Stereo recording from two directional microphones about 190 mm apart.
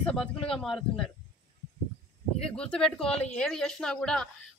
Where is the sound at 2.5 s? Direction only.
5° left (ahead or behind).